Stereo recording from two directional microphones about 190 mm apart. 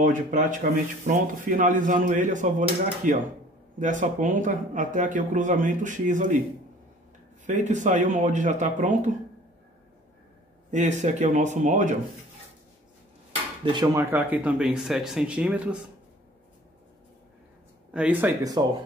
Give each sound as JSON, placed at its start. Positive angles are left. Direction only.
{"t": 0.0, "sound": "speech", "side_deg": -40}
{"t": 7.4, "sound": "speech", "side_deg": -40}
{"t": 10.7, "sound": "speech", "side_deg": -40}
{"t": 13.7, "sound": "speech", "side_deg": -25}
{"t": 14.1, "sound": "speech", "side_deg": -10}
{"t": 17.9, "sound": "speech", "side_deg": -10}